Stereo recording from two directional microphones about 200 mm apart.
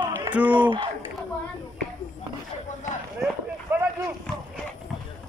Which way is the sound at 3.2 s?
10° right (ahead or behind).